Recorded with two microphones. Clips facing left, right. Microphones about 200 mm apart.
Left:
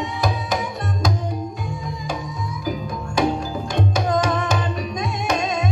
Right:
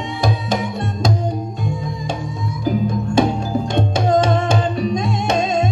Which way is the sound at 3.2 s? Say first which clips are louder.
Right 3 dB; 30° right (ahead or behind).